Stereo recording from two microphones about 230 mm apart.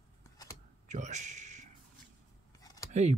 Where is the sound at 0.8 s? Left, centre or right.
Right.